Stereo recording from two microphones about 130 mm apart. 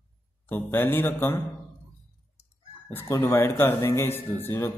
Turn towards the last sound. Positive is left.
turn(degrees=15)  # may be behind; listen again after turning